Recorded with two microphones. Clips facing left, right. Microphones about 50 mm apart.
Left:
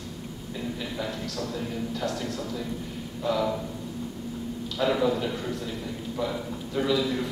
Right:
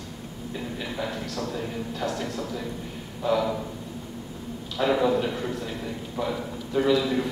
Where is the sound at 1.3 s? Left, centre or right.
Centre.